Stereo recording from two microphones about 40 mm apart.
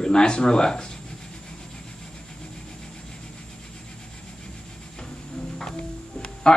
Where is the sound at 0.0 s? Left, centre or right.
Centre.